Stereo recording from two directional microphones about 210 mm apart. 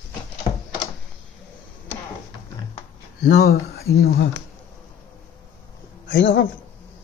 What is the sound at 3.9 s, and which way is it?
Speech, 15° left (ahead or behind).